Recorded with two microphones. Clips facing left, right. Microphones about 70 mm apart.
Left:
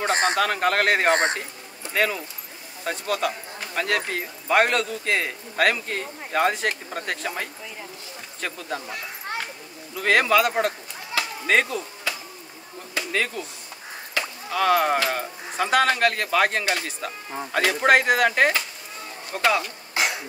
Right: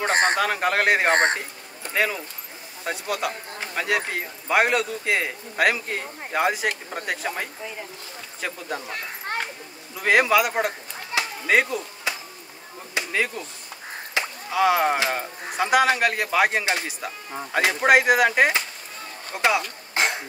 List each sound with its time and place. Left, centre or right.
0.1 s speech: right
0.4 s speech: centre
1.1 s speech: right
2.0 s speech: centre
8.8 s a child's voice: right
9.9 s speech: centre
12.1 s a sound: centre
12.9 s chop: centre
14.2 s wood: right
14.5 s speech: centre
17.6 s speech: centre
19.9 s throat clearing: right